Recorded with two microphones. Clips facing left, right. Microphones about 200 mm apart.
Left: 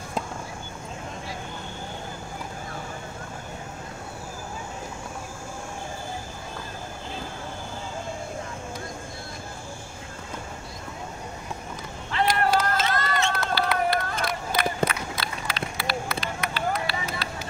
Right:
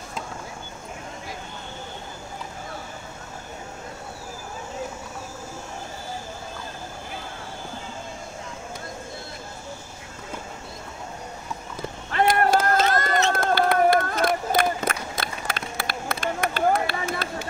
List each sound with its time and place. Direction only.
12.1 s run: 50° right (ahead or behind)